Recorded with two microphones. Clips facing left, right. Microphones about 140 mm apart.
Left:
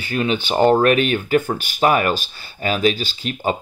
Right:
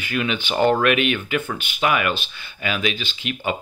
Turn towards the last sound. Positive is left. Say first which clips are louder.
# left 4 dB
turn(degrees=35)  # may be behind; listen again after turning